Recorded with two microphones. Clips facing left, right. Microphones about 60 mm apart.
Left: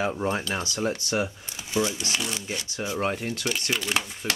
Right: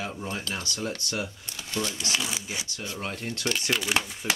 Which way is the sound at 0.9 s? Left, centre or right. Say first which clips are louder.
Left 5 dB; centre.